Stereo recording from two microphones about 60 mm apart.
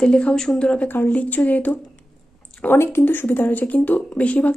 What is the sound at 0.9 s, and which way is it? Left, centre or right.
Speech, left.